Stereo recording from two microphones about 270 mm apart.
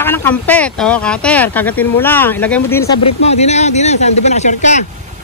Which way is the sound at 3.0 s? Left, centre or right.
Left.